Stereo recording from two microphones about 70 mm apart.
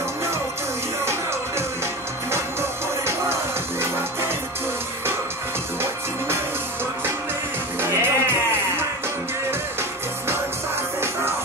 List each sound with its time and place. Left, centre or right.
5.8 s music: right
7.8 s music: right